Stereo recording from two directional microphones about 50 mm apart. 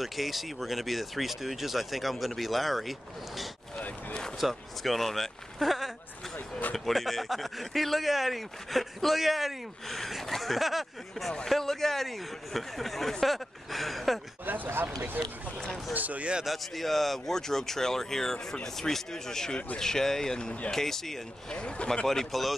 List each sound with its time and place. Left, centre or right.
0.0 s speech: centre
14.4 s speech: right
15.2 s speech: centre
15.9 s speech: right
16.4 s speech: centre
21.5 s speech: centre
22.0 s speech: centre